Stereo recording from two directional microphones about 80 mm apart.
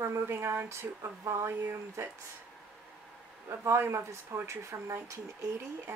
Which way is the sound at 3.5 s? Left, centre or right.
Right.